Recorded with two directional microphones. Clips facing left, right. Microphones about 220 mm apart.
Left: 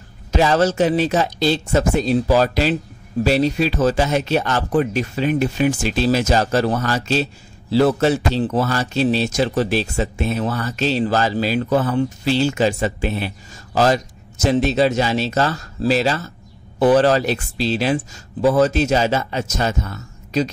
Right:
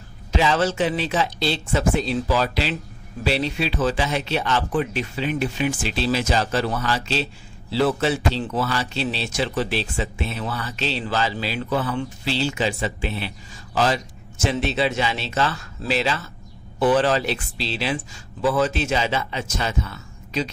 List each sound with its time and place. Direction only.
0.3 s speech: 45° left (ahead or behind)